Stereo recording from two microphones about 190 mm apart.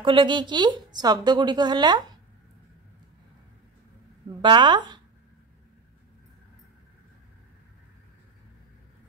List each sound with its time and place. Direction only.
0.0 s a woman's voice: 25° right (ahead or behind)
4.4 s a woman's voice: 25° right (ahead or behind)